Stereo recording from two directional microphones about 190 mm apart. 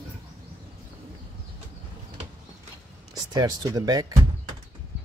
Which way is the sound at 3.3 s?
20° right (ahead or behind).